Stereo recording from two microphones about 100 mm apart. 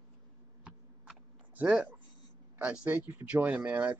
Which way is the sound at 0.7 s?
15° right (ahead or behind).